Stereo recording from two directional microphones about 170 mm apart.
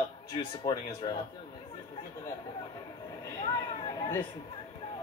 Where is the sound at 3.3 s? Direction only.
30° left (ahead or behind).